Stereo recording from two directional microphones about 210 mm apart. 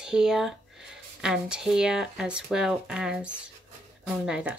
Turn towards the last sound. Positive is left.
turn(degrees=-5)  # may be behind; listen again after turning